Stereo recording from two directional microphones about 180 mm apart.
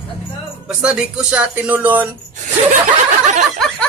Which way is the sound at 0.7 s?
5° right (ahead or behind).